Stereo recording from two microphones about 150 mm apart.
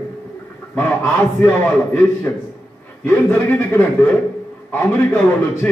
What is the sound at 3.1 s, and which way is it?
A man's voice, 15° left (ahead or behind).